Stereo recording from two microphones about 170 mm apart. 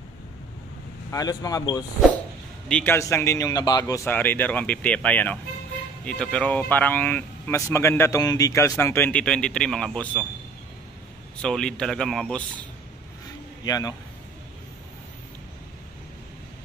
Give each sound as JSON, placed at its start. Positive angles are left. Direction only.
{"t": 1.1, "sound": "speech", "side_deg": 20}
{"t": 11.4, "sound": "speech", "side_deg": 5}
{"t": 13.7, "sound": "speech", "side_deg": 20}